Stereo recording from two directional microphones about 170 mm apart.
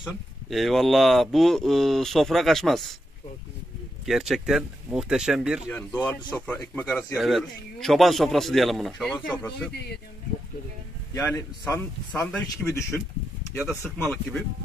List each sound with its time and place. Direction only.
0.0 s speech: centre (ahead or behind)
4.0 s speech: 5° right (ahead or behind)
5.7 s speech: 10° left (ahead or behind)
7.2 s speech: centre (ahead or behind)
11.1 s speech: 15° left (ahead or behind)
12.6 s speech: 15° left (ahead or behind)